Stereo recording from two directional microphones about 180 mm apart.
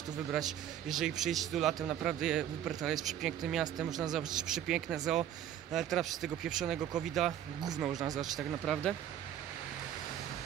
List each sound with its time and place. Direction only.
0.3 s a man's voice: centre (ahead or behind)